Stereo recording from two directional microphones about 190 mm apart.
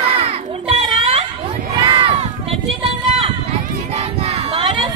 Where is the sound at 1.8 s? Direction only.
25° right (ahead or behind).